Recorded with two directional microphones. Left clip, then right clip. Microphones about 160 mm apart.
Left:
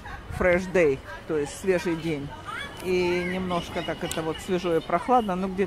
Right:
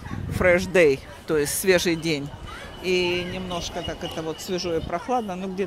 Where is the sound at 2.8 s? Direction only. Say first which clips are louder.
Right 2 dB; 10° right (ahead or behind).